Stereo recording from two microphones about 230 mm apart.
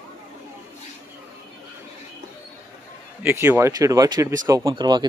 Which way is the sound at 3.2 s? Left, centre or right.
Centre.